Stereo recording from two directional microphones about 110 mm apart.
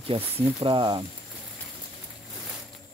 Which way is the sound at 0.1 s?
50° right (ahead or behind).